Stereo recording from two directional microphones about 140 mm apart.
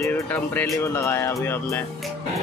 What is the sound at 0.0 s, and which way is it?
Speech, 15° left (ahead or behind).